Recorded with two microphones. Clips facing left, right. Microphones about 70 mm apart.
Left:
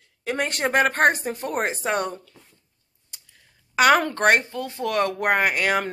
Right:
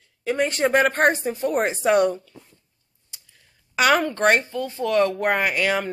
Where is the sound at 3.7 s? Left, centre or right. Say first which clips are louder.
Left 1 dB; left.